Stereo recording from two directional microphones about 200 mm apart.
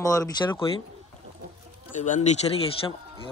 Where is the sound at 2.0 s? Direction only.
35° left (ahead or behind).